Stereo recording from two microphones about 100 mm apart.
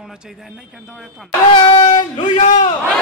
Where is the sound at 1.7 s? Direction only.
50° left (ahead or behind).